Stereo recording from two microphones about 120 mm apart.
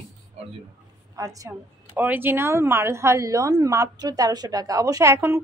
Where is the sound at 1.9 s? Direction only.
15° right (ahead or behind).